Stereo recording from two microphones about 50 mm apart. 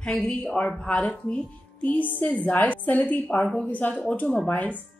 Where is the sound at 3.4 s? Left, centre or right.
Centre.